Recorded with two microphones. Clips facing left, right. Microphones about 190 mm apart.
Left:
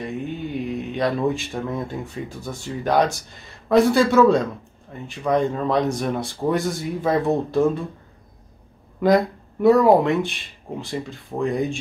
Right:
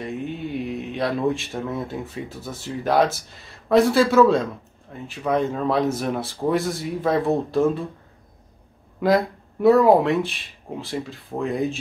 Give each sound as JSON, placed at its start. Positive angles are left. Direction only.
{"t": 0.0, "sound": "speech", "side_deg": 0}
{"t": 9.0, "sound": "speech", "side_deg": 0}